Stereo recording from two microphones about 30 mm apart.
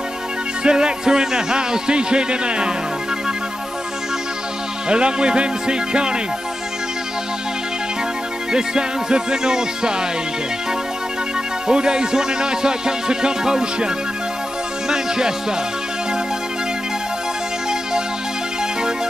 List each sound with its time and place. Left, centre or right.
0.7 s music: right
4.8 s speech: right
8.5 s music: right
11.6 s music: right